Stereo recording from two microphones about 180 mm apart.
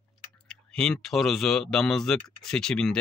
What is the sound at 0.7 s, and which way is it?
Speech, 5° left (ahead or behind).